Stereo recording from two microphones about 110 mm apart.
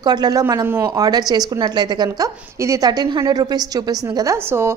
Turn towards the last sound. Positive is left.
turn(degrees=-25)  # may be behind; listen again after turning